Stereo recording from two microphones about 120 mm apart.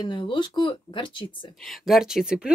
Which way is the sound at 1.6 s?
Centre (ahead or behind).